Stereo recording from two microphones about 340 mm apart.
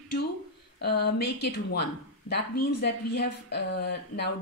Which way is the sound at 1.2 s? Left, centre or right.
Left.